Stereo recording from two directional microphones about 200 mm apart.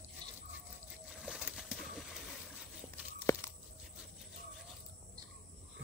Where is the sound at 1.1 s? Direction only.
Centre (ahead or behind).